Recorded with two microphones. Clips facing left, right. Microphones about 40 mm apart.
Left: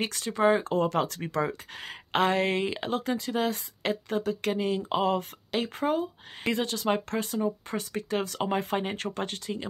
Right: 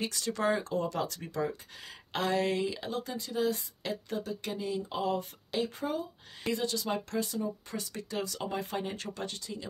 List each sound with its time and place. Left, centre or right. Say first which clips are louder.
0.0 s speech: left 4 dB; left
0.3 s speech: left 7 dB; left
0.7 s speech: left 6 dB; left